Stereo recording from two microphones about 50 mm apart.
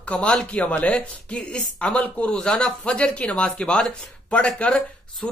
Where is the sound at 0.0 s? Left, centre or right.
Left.